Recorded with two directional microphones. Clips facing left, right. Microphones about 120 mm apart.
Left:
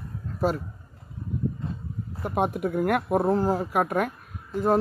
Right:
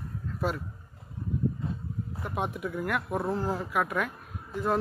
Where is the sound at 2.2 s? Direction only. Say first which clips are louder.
Left 8 dB; 45° left (ahead or behind).